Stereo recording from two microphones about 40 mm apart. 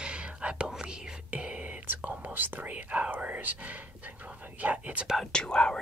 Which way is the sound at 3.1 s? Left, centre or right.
Right.